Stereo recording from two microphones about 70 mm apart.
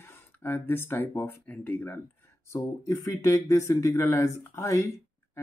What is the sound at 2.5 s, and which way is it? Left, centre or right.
Speech, left.